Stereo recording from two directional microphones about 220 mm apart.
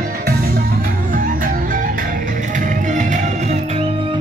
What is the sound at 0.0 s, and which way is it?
Music, 45° right (ahead or behind).